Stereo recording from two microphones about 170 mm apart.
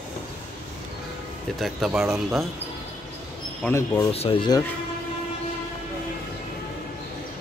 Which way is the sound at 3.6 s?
10° left (ahead or behind).